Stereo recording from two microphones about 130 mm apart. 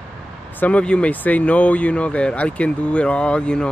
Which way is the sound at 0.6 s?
10° left (ahead or behind).